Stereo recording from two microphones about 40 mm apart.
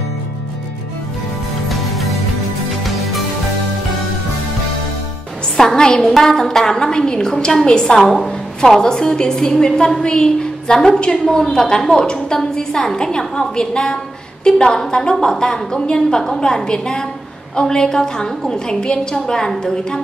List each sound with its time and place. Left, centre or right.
1.7 s music: centre
5.6 s a woman's voice: centre
8.0 s a woman's voice: centre
8.5 s a woman's voice: centre